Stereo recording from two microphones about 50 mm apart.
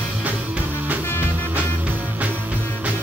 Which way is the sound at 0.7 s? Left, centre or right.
Right.